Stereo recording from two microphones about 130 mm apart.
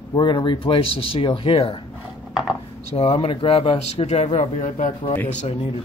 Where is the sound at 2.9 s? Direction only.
50° left (ahead or behind); by 4.9 s 75° left (ahead or behind).